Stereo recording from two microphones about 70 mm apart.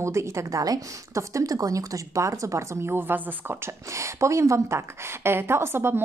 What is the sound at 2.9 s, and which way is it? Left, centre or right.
Speech, right.